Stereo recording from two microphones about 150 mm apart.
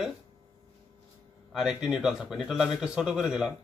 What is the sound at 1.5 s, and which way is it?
Speech, 5° right (ahead or behind).